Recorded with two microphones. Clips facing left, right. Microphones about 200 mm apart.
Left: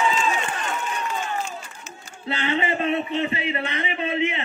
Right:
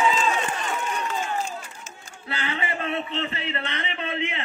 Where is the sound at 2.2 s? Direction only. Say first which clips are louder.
Left 6 dB; 25° left (ahead or behind).